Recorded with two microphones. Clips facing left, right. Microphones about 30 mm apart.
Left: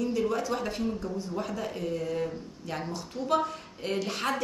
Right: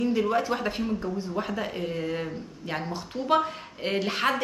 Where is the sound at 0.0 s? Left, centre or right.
Right.